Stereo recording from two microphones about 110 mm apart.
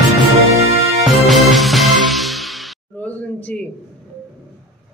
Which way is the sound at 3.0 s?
15° left (ahead or behind).